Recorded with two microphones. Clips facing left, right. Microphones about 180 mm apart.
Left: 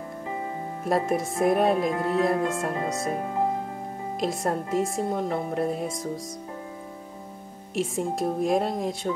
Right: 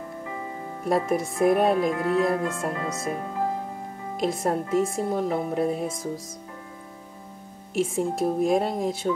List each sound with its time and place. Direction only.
0.8 s speech: centre (ahead or behind)
1.9 s music: 25° left (ahead or behind)
2.5 s speech: centre (ahead or behind)
4.2 s speech: centre (ahead or behind)
7.7 s speech: centre (ahead or behind)